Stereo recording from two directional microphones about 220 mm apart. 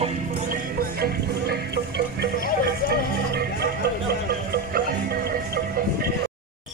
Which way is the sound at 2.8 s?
40° left (ahead or behind).